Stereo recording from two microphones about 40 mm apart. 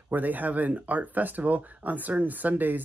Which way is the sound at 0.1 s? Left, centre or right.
Right.